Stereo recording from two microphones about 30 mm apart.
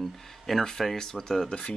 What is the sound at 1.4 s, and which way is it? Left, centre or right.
Speech, left.